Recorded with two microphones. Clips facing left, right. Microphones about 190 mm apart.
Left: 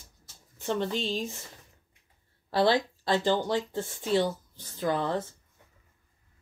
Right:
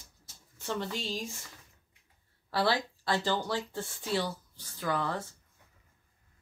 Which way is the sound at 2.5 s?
20° left (ahead or behind).